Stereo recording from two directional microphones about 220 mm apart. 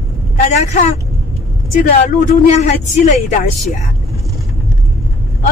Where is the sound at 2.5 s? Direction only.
30° left (ahead or behind).